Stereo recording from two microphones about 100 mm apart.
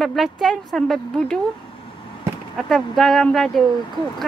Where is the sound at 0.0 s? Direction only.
Centre (ahead or behind).